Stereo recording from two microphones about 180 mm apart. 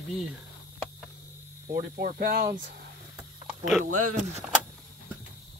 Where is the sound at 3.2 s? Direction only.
Centre (ahead or behind).